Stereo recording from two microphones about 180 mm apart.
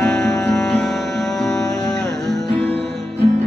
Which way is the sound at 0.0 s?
5° left (ahead or behind).